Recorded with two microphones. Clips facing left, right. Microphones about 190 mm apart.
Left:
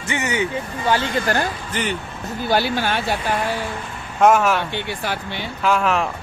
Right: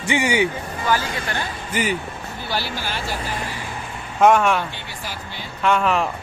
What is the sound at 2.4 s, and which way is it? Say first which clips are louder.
Speech: left 8 dB; 55° left (ahead or behind).